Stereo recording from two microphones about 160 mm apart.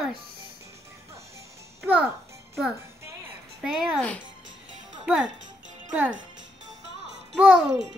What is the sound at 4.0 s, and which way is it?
Speech, 10° left (ahead or behind).